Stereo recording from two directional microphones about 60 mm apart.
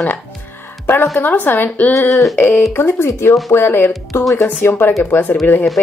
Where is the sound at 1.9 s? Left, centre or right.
Left.